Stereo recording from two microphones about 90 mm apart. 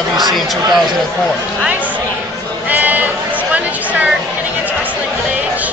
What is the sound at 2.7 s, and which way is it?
Sheep, 20° right (ahead or behind).